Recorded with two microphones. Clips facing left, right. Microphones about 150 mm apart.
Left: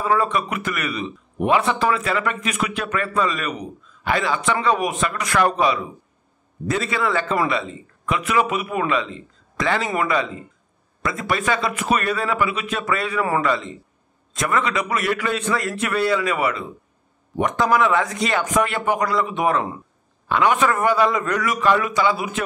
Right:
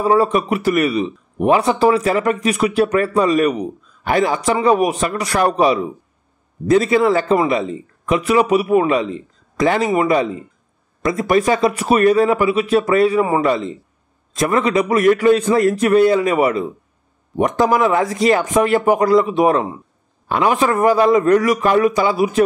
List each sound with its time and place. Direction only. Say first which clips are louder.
0.0 s speech: right 6 dB; 35° right (ahead or behind)
17.7 s speech: right 3 dB; 35° right (ahead or behind)